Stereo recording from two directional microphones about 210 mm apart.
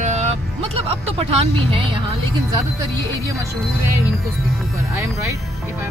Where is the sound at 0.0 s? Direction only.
30° right (ahead or behind).